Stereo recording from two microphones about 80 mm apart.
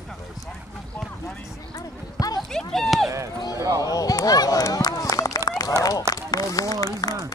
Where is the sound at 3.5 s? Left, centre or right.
Right.